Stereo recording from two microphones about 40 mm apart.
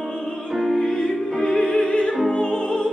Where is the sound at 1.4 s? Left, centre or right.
Left.